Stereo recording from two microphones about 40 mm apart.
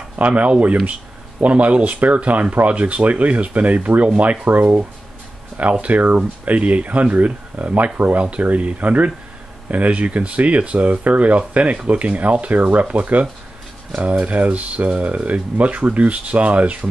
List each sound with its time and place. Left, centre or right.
0.1 s speech: right